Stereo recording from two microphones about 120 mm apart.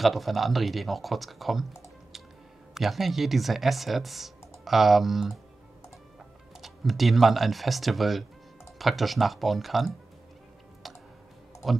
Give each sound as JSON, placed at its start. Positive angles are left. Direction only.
{"t": 0.0, "sound": "speech", "side_deg": 0}
{"t": 6.6, "sound": "speech", "side_deg": 0}
{"t": 11.6, "sound": "speech", "side_deg": 0}